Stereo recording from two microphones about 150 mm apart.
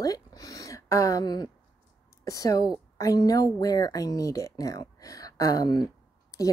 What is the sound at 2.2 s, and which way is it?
Speech, 20° left (ahead or behind).